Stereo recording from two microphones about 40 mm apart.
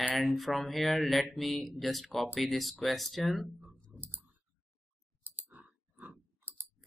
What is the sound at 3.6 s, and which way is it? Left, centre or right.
Typing, right.